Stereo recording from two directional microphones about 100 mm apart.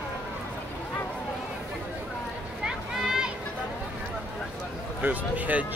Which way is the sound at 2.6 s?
5° right (ahead or behind).